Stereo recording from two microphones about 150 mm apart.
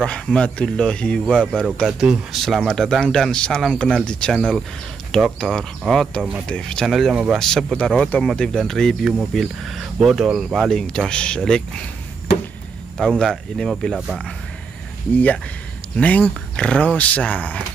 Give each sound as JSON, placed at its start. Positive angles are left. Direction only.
{"t": 0.0, "sound": "speech", "side_deg": 5}
{"t": 12.9, "sound": "speech", "side_deg": 5}
{"t": 15.1, "sound": "speech", "side_deg": 10}